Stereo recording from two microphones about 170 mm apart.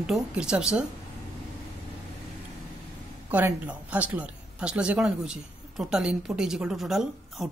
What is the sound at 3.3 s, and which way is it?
A woman's voice, 10° right (ahead or behind).